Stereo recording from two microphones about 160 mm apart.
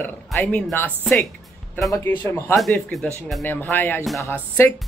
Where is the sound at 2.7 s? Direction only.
Centre (ahead or behind).